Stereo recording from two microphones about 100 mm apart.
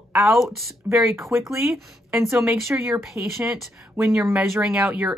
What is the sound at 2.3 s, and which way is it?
Speech, 25° right (ahead or behind).